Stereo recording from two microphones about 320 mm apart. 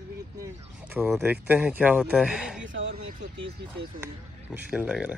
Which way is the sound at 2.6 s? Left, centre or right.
Right.